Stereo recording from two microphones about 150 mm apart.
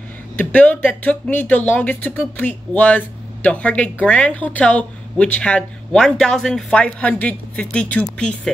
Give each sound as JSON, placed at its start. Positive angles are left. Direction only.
{"t": 0.4, "sound": "a woman's voice", "side_deg": 10}